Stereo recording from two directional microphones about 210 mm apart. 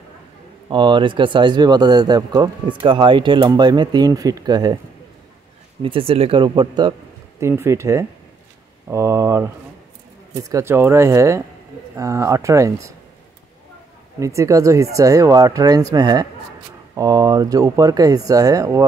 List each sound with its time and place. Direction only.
0.7 s speech: 25° right (ahead or behind)
5.8 s speech: 25° right (ahead or behind)
14.2 s speech: 15° right (ahead or behind)